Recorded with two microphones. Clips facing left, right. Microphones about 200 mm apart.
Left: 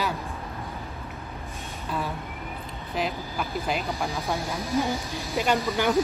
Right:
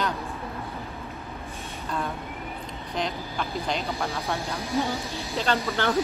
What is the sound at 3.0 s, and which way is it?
Speech, 5° left (ahead or behind).